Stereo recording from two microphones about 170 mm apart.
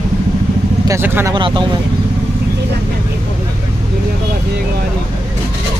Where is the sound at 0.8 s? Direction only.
15° right (ahead or behind).